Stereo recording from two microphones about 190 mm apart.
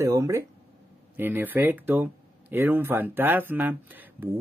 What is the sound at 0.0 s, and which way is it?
Speech, 15° right (ahead or behind).